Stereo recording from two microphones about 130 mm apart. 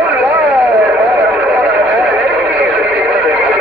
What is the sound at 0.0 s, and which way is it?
Vehicle, 5° right (ahead or behind).